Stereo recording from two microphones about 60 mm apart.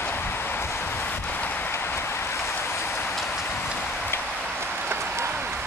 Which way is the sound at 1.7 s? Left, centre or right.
Left.